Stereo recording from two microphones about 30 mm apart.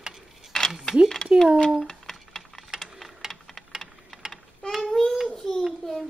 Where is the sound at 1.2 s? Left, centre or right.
Left.